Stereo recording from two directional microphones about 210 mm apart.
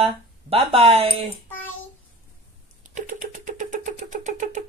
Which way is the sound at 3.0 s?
35° right (ahead or behind).